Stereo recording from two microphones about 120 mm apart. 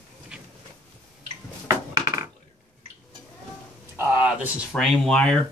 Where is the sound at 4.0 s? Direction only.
10° right (ahead or behind).